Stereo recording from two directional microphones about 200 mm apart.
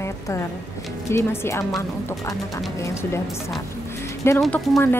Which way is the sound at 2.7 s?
15° left (ahead or behind).